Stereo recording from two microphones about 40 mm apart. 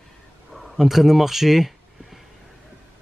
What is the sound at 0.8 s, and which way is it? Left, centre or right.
Speech, centre.